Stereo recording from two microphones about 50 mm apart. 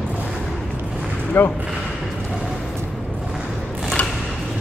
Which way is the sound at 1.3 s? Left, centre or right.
Left.